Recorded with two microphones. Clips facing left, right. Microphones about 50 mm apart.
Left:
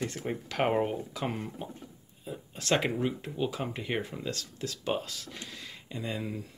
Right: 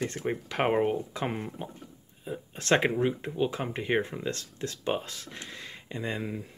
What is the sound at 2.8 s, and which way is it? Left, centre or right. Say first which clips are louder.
Speech: right 4 dB; right.